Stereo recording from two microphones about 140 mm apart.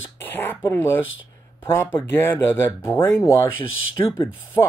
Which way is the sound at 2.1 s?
15° left (ahead or behind).